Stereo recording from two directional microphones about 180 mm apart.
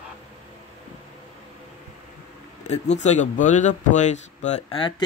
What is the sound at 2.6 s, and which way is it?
Speech, 40° left (ahead or behind).